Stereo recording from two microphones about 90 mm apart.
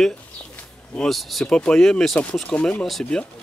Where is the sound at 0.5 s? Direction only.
15° left (ahead or behind).